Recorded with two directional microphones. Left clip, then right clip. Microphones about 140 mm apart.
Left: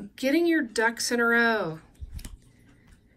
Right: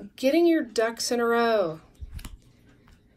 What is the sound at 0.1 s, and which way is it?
Speech, 20° right (ahead or behind).